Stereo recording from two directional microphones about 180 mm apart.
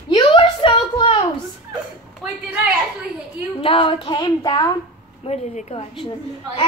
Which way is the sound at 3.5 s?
30° left (ahead or behind).